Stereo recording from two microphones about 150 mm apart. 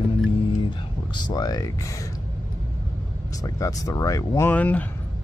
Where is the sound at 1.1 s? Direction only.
30° left (ahead or behind).